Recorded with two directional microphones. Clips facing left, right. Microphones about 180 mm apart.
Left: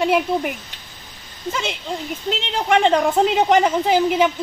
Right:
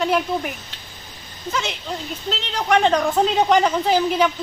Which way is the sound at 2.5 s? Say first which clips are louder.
Left 1 dB; 25° left (ahead or behind).